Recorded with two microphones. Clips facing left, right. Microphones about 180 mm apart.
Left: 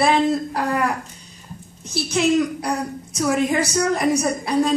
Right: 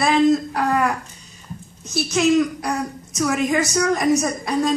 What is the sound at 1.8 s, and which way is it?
A child's voice, 30° left (ahead or behind).